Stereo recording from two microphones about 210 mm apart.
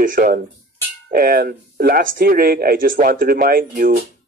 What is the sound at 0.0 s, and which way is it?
Speech, 40° right (ahead or behind).